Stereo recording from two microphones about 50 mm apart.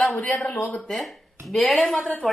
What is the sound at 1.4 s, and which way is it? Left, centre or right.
Speech, centre.